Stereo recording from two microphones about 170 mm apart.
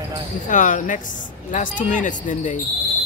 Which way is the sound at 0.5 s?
50° left (ahead or behind).